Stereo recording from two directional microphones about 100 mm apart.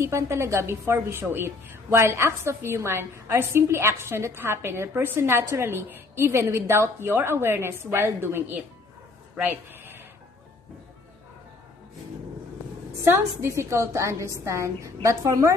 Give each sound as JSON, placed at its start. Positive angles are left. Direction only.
{"t": 0.0, "sound": "a woman's voice", "side_deg": -30}
{"t": 9.4, "sound": "a sound", "side_deg": -20}
{"t": 13.0, "sound": "a woman's voice", "side_deg": -25}